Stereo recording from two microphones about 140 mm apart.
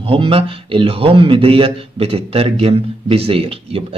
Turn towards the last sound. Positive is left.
turn(degrees=-40)  # may be behind; listen again after turning